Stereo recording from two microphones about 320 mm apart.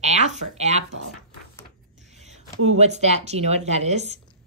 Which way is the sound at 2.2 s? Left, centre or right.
Right.